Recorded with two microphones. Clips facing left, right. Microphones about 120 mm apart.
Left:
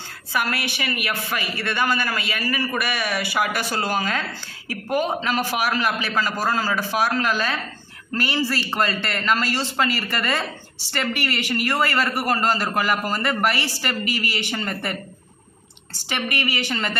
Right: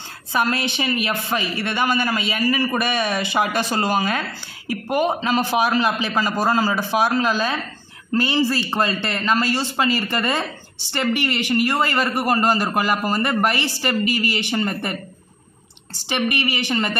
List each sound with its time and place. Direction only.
0.3 s a woman's voice: 25° right (ahead or behind)
16.1 s speech: 15° right (ahead or behind)